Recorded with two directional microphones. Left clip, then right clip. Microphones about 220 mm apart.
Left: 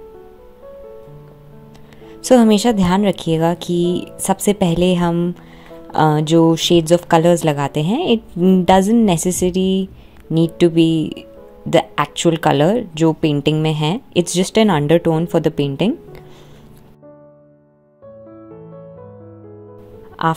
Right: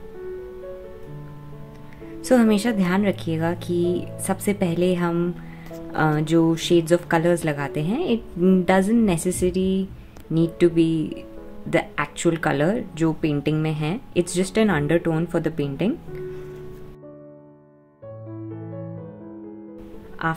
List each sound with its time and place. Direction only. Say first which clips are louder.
2.2 s speech: left 7 dB; 25° left (ahead or behind)
20.2 s speech: left 7 dB; 30° left (ahead or behind)